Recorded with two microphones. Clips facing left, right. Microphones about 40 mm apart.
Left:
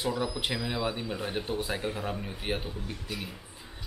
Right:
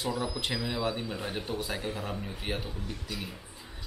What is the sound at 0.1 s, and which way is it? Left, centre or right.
Speech, centre.